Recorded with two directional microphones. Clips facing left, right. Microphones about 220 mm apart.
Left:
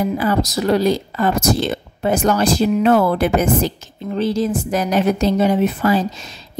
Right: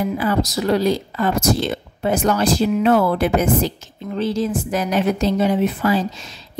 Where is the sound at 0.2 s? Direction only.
40° left (ahead or behind).